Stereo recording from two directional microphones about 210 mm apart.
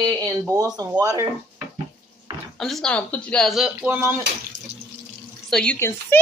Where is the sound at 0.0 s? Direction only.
15° right (ahead or behind).